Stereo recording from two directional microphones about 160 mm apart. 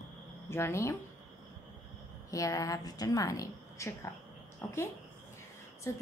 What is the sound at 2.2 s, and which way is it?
A woman's voice, 20° left (ahead or behind).